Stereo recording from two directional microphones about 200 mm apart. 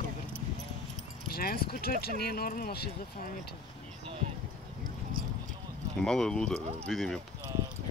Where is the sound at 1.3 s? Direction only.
50° left (ahead or behind).